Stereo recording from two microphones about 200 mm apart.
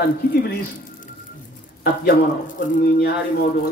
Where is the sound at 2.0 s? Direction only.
45° left (ahead or behind).